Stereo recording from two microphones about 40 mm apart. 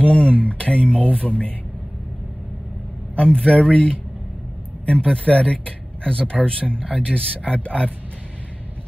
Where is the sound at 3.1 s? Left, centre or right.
Left.